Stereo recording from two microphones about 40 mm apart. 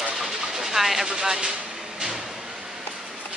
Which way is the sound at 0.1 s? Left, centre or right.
Centre.